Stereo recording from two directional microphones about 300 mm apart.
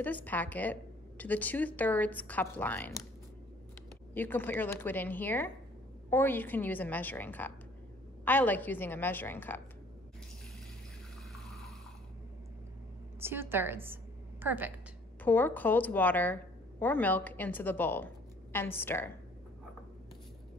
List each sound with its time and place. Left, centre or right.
0.0 s a woman's voice: centre
4.1 s a woman's voice: centre
11.3 s a sound: centre
13.2 s a woman's voice: centre
15.2 s a woman's voice: centre